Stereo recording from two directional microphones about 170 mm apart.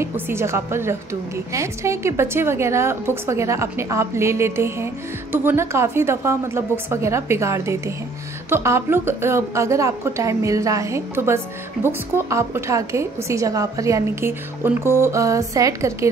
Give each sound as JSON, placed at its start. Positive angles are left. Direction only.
{"t": 0.0, "sound": "a woman's voice", "side_deg": -15}